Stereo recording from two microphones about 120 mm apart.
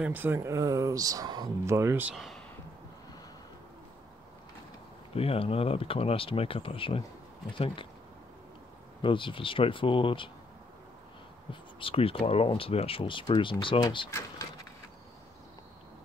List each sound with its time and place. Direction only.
0.0 s speech: 15° right (ahead or behind); by 1.8 s 35° right (ahead or behind)
1.8 s speech: 25° right (ahead or behind)
2.1 s speech: centre (ahead or behind)
5.1 s speech: 55° left (ahead or behind)
9.0 s speech: 45° left (ahead or behind)
11.8 s speech: 50° left (ahead or behind)